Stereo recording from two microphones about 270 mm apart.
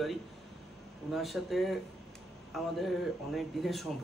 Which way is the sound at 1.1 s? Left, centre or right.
Centre.